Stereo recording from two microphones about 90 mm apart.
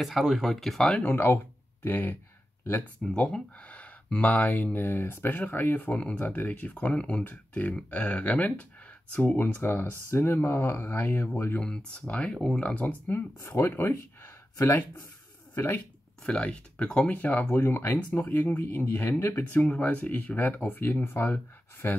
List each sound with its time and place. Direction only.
0.0 s speech: centre (ahead or behind)
1.0 s speech: 25° left (ahead or behind)
3.0 s speech: 10° left (ahead or behind)
11.6 s speech: 10° left (ahead or behind)
13.4 s speech: 35° left (ahead or behind)
16.3 s speech: 10° left (ahead or behind)
18.5 s speech: 35° left (ahead or behind)